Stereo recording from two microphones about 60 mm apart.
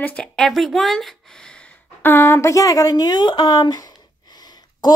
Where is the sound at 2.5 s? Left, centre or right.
Left.